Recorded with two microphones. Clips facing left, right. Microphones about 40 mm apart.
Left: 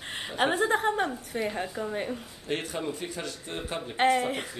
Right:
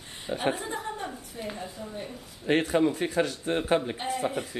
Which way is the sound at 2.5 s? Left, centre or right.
Right.